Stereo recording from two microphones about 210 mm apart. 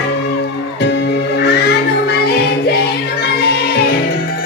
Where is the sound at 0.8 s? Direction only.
55° left (ahead or behind).